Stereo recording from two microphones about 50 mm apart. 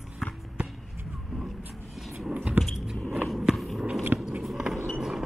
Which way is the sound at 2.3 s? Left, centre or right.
Right.